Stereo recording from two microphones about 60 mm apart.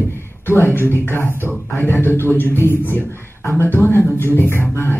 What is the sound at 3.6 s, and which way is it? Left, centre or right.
Speech, left.